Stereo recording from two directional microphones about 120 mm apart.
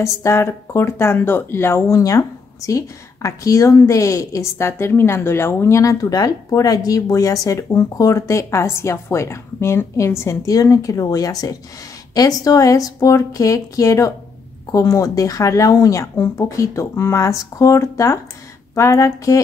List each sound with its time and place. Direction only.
0.0 s speech: 25° left (ahead or behind)